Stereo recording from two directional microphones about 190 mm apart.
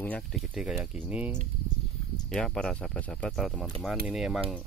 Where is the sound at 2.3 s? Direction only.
5° left (ahead or behind).